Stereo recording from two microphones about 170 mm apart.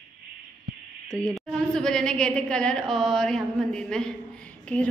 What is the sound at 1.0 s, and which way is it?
A woman's voice, 5° left (ahead or behind).